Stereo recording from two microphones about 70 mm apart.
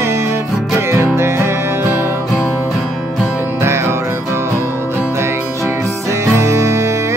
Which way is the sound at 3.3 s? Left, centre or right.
Right.